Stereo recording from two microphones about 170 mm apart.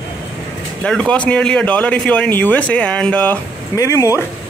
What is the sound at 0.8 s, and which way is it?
Speech, 5° left (ahead or behind).